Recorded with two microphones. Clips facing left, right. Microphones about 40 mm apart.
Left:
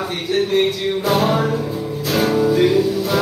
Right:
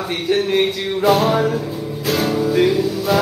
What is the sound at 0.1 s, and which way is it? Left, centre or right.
Speech, centre.